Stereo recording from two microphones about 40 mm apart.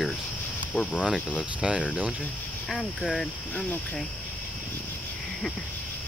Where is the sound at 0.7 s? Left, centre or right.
Left.